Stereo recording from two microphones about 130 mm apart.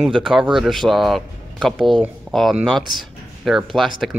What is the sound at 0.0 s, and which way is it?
Speech, 5° right (ahead or behind).